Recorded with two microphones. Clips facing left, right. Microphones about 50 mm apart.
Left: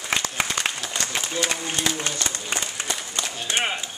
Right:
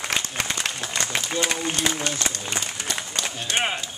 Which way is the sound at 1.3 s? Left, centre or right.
Centre.